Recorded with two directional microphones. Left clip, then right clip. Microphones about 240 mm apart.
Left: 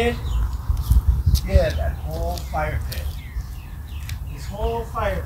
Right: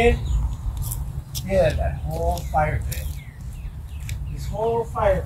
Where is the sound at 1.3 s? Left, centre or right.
Right.